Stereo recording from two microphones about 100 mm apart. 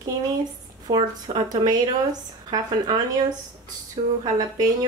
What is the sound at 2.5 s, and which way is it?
Speech, 40° right (ahead or behind).